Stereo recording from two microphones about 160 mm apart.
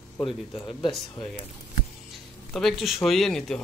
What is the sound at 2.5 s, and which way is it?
Speech, centre (ahead or behind).